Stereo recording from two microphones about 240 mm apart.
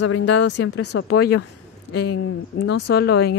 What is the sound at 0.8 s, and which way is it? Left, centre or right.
Speech, left.